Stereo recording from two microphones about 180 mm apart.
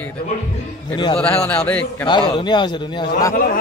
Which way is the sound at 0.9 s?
25° left (ahead or behind).